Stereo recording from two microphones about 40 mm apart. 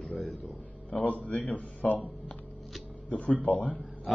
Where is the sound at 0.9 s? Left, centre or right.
Left.